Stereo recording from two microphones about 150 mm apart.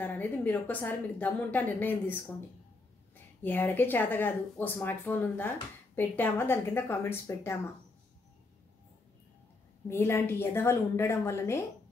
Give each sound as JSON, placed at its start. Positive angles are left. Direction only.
{"t": 0.0, "sound": "a woman's voice", "side_deg": 10}
{"t": 3.4, "sound": "a woman's voice", "side_deg": 15}
{"t": 9.8, "sound": "a woman's voice", "side_deg": 15}